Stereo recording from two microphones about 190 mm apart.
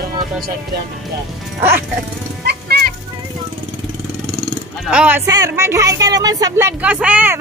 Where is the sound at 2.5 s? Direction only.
55° right (ahead or behind).